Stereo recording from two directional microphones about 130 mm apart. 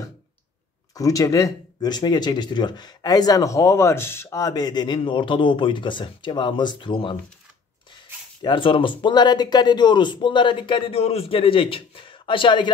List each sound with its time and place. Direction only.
0.9 s speech: 25° left (ahead or behind)